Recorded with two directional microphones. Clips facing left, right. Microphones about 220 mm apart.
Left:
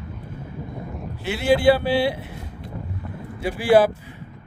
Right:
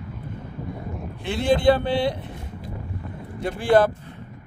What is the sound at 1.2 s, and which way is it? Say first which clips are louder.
A man's voice: left 2 dB; 5° left (ahead or behind).